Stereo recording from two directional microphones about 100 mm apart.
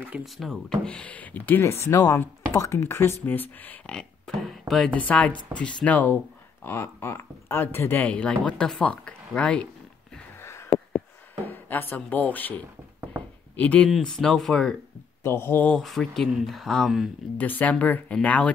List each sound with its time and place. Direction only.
0.2 s speech: centre (ahead or behind)
0.8 s speech: 10° left (ahead or behind)
4.9 s speech: 15° left (ahead or behind)
10.4 s a sound: 25° left (ahead or behind)
11.4 s speech: 20° left (ahead or behind)
13.6 s speech: 15° left (ahead or behind)
13.8 s speech: 5° left (ahead or behind)
15.2 s speech: 25° left (ahead or behind)
15.7 s speech: 5° left (ahead or behind)
17.4 s speech: 15° left (ahead or behind)